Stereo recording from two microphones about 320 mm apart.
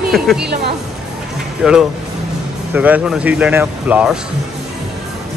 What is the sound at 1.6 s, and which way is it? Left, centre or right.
Speech, centre.